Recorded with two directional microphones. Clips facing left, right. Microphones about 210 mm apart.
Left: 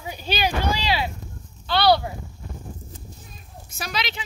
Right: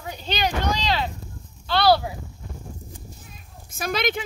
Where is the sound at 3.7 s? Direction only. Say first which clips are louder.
Right 6 dB; 50° right (ahead or behind).